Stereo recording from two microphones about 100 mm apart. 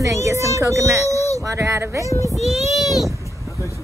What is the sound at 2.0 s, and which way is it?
Speech, 30° left (ahead or behind).